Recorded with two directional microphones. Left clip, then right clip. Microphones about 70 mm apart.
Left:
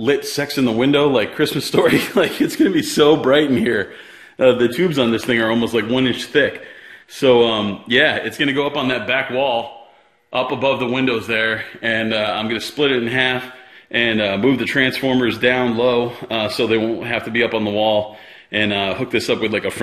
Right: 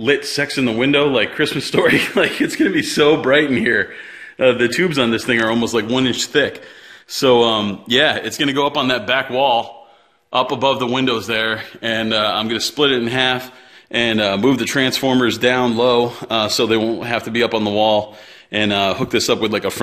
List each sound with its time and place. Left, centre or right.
0.6 s a man's voice: centre
4.7 s speech: centre
5.6 s a man's voice: right
19.5 s speech: right